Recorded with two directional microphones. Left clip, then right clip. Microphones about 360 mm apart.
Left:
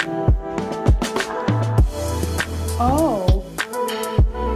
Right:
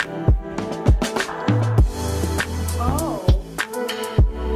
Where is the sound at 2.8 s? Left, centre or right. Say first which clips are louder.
Left 7 dB; left.